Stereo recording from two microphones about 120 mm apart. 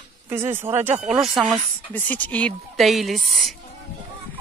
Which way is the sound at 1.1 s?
5° right (ahead or behind).